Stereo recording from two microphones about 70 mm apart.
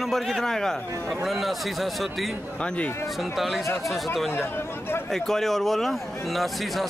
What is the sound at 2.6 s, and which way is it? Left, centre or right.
Speech, centre.